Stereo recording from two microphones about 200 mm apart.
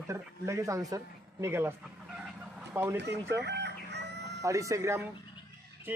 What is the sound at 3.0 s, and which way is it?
Speech, 60° right (ahead or behind).